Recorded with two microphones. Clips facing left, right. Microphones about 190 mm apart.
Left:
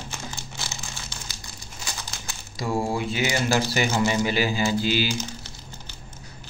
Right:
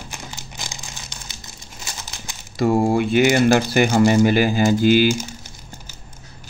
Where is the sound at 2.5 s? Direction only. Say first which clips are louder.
Right 9 dB; 60° right (ahead or behind).